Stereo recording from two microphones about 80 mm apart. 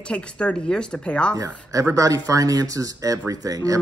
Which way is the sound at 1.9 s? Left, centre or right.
Right.